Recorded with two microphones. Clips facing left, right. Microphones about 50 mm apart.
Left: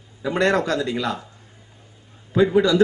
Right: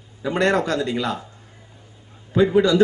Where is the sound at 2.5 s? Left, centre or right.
Right.